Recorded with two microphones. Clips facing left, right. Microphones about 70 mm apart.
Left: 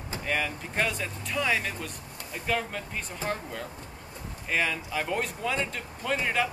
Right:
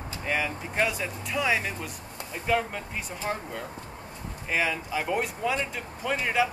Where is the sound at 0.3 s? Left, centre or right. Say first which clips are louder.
Right 1 dB; centre.